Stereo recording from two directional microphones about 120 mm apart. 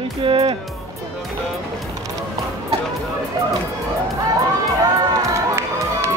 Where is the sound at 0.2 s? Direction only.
50° right (ahead or behind).